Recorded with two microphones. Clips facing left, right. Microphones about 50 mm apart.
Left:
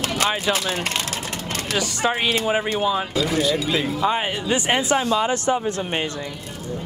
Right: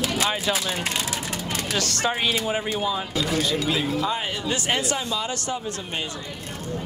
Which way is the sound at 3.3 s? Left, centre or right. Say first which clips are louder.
Left 2 dB; centre.